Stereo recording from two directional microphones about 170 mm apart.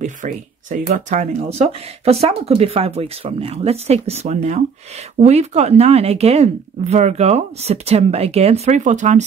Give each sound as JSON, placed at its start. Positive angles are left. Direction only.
{"t": 0.0, "sound": "speech", "side_deg": -50}